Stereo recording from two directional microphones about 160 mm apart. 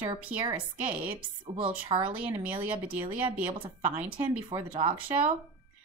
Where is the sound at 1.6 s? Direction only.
35° right (ahead or behind).